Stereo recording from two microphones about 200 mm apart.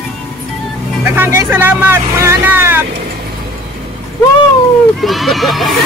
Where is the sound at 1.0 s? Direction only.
10° right (ahead or behind).